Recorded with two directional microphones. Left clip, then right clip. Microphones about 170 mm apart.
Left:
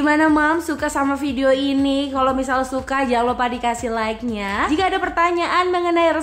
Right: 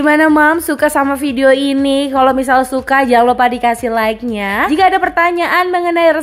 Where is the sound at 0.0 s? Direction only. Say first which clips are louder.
Right 7 dB; 35° right (ahead or behind).